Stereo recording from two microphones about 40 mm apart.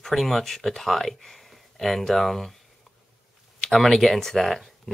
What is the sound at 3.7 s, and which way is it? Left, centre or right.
Speech, centre.